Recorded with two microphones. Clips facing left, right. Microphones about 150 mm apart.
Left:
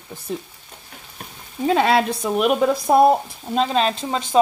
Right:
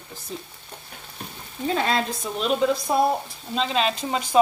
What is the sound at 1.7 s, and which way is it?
Speech, 70° left (ahead or behind).